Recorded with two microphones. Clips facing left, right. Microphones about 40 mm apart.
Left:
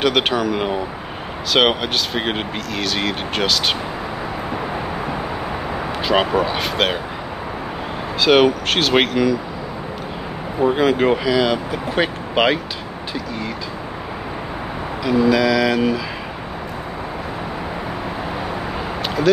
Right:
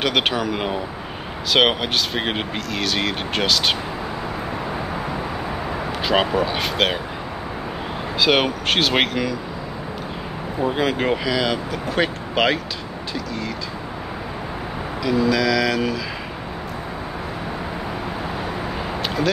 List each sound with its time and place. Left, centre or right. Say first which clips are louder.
0.0 s speech: left 3 dB; centre
6.0 s speech: left 2 dB; centre
8.2 s speech: left 5 dB; centre
10.6 s speech: left 5 dB; centre
15.0 s a sound: left 3 dB; centre
19.0 s a sound: left 6 dB; centre